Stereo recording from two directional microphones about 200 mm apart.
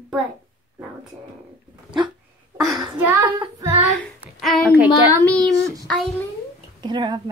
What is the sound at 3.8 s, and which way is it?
Speech, centre (ahead or behind).